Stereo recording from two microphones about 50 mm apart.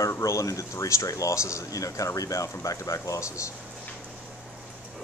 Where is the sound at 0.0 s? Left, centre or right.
Left.